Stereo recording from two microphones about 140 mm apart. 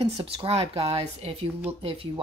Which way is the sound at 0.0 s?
40° right (ahead or behind).